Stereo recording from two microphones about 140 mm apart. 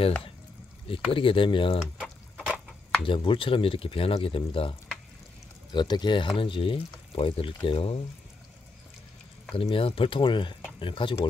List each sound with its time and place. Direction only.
1.1 s speech: 40° left (ahead or behind)
2.0 s liquid: 5° right (ahead or behind)
3.1 s speech: 40° left (ahead or behind)
9.6 s speech: 40° left (ahead or behind)